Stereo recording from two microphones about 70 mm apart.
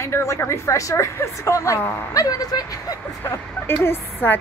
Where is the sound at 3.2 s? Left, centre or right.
Left.